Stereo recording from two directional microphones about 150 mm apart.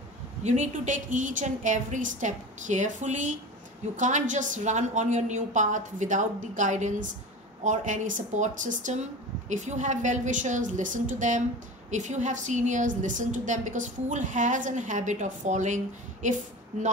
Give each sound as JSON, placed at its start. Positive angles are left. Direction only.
{"t": 0.4, "sound": "a woman's voice", "side_deg": -50}